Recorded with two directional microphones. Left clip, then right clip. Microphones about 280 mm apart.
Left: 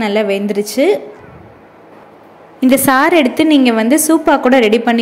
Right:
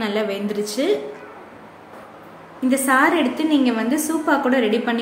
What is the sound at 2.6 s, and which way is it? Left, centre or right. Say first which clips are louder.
A woman's voice: left 6 dB; left.